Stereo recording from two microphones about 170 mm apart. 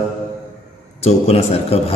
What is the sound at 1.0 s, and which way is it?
Mantra, 35° left (ahead or behind).